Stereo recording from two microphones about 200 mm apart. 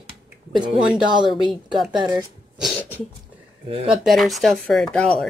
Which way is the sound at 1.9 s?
20° right (ahead or behind).